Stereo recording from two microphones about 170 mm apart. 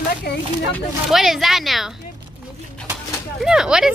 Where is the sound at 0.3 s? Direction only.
70° left (ahead or behind).